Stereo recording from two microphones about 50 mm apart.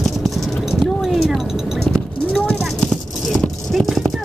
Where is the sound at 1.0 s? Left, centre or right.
Centre.